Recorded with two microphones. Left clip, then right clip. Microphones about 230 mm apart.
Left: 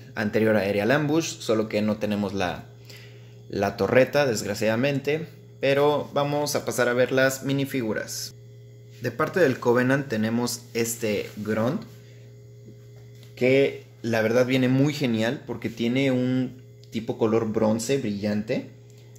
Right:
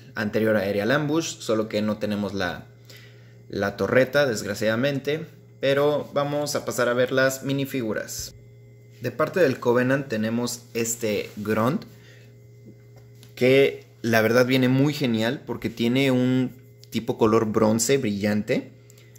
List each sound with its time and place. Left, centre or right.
0.1 s speech: centre
11.4 s speech: right
13.3 s speech: right